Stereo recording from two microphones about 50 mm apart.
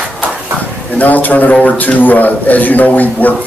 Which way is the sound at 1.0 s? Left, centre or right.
Left.